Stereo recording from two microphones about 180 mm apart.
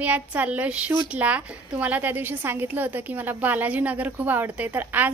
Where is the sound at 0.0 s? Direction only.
10° right (ahead or behind).